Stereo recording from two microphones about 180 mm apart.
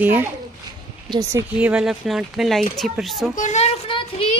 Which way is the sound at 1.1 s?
20° right (ahead or behind).